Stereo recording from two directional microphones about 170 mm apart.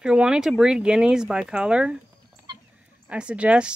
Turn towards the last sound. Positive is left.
turn(degrees=-5)  # may be behind; listen again after turning